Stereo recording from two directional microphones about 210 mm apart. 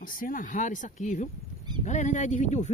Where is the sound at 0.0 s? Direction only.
40° left (ahead or behind).